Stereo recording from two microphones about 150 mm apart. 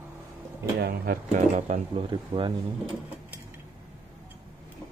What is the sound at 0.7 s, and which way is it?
Speech, 90° right.